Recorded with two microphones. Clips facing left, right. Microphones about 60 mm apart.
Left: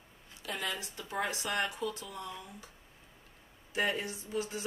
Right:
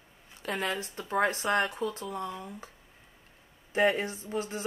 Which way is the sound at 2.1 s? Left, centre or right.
Right.